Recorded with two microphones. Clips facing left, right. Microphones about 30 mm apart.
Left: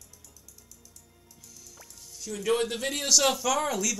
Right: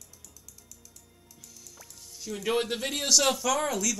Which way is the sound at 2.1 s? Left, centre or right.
Centre.